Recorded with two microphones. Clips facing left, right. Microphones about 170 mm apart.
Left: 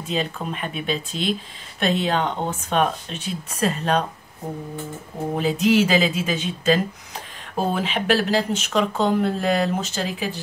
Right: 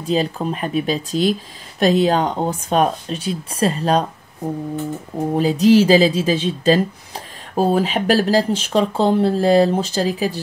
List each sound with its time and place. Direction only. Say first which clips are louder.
0.0 s speech: right 6 dB; 35° right (ahead or behind)
5.3 s speech: right 6 dB; 35° right (ahead or behind)